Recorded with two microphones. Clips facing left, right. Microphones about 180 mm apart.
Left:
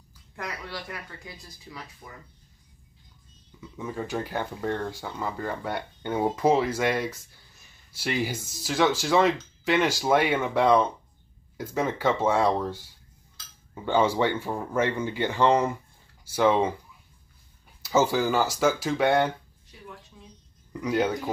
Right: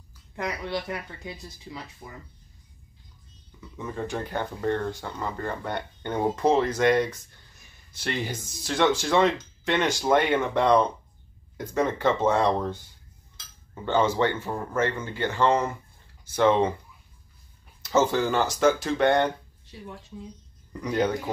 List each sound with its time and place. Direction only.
0.4 s speech: 20° right (ahead or behind)
3.7 s speech: 5° left (ahead or behind)
13.8 s speech: 10° left (ahead or behind)
17.8 s speech: 10° left (ahead or behind)
20.8 s speech: 5° left (ahead or behind)